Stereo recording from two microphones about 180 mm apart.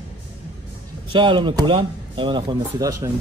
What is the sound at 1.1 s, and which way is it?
Speech, 25° right (ahead or behind).